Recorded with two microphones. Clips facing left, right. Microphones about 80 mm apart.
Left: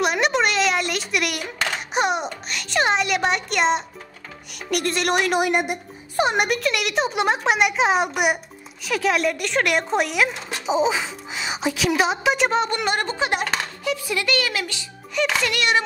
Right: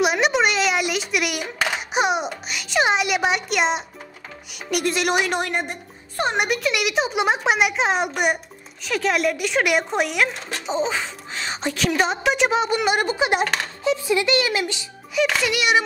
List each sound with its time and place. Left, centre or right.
0.0 s a sound: centre
4.6 s speech: centre
5.4 s speech: centre
13.8 s speech: right
15.1 s speech: centre